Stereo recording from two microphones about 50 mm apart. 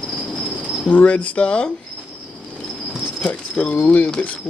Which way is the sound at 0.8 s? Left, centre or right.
Left.